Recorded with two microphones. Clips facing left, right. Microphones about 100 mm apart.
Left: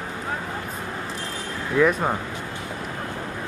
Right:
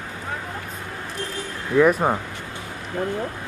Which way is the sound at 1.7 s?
10° right (ahead or behind).